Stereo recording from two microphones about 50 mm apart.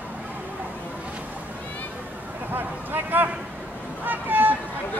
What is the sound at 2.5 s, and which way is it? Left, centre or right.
Speech, right.